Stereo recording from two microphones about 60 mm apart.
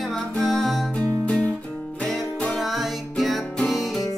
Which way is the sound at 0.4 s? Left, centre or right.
Centre.